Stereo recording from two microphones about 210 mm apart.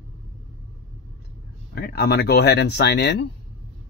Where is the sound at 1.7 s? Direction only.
50° left (ahead or behind).